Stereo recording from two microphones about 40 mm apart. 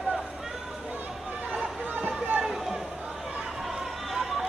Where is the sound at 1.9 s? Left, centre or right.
Right.